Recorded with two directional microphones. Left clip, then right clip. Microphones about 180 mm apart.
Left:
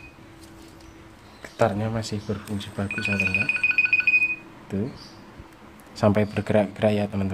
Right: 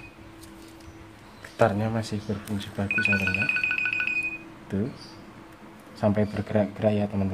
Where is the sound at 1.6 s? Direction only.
Centre (ahead or behind).